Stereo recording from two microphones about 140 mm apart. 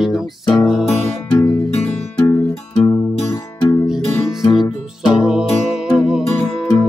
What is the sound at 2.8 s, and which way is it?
Music, 25° left (ahead or behind).